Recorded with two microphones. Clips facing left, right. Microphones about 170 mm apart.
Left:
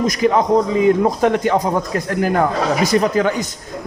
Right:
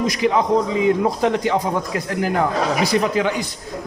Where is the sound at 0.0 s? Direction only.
50° left (ahead or behind).